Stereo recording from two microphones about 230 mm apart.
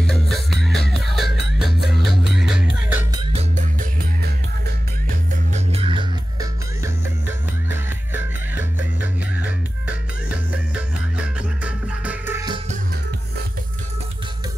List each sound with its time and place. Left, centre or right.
0.0 s music: centre
5.3 s music: right; by 8.2 s centre
11.3 s music: centre